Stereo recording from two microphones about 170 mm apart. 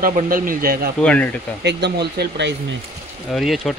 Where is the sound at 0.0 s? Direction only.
55° right (ahead or behind).